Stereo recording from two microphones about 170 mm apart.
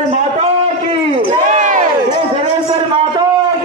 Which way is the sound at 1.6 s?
45° right (ahead or behind).